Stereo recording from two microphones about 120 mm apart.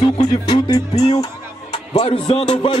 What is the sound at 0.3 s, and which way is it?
Speech, 35° left (ahead or behind).